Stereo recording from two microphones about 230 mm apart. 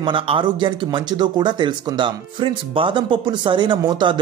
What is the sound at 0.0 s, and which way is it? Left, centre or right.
Speech, right.